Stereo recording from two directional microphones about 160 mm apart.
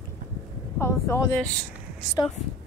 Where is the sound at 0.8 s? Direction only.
15° left (ahead or behind).